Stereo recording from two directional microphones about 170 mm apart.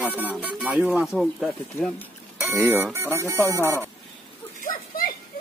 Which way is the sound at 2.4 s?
15° right (ahead or behind).